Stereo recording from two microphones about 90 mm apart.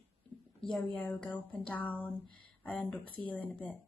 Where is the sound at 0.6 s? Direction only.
5° left (ahead or behind).